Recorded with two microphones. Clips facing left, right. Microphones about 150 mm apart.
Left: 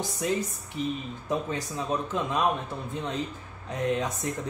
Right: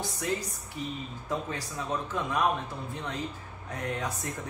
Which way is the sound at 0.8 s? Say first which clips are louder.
Left 6 dB; 20° left (ahead or behind).